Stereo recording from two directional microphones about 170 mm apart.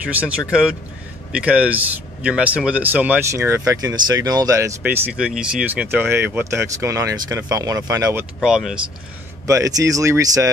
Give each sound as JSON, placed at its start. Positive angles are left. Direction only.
{"t": 0.0, "sound": "speech", "side_deg": -10}
{"t": 8.4, "sound": "speech", "side_deg": -5}
{"t": 9.5, "sound": "speech", "side_deg": -20}